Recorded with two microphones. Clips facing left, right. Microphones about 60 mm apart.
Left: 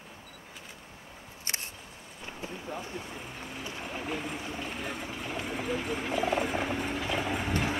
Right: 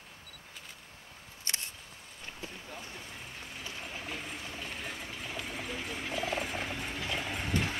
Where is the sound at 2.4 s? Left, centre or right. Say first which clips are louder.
Left 8 dB; left.